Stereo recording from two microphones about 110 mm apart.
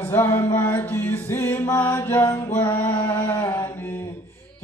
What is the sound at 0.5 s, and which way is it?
Music, 20° left (ahead or behind).